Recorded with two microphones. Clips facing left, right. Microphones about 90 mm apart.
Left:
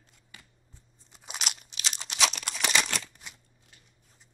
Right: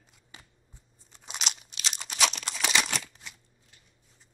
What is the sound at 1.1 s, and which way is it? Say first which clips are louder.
Crunch: even; 5° left (ahead or behind).